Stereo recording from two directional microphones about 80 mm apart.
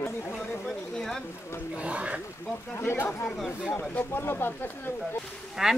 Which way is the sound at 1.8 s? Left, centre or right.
Centre.